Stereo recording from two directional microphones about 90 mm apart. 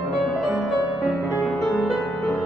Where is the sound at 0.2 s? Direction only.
Centre (ahead or behind).